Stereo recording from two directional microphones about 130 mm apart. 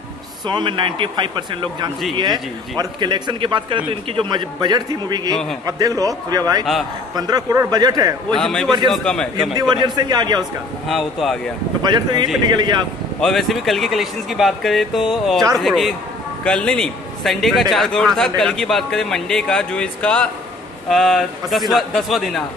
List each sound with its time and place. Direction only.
0.5 s a man's voice: 35° right (ahead or behind)
6.6 s a man's voice: centre (ahead or behind)
7.2 s speech: 30° right (ahead or behind)
8.4 s a man's voice: 5° left (ahead or behind)
9.6 s a man's voice: 35° right (ahead or behind)
10.9 s a man's voice: centre (ahead or behind)
11.8 s a man's voice: 35° right (ahead or behind)
13.2 s a man's voice: centre (ahead or behind)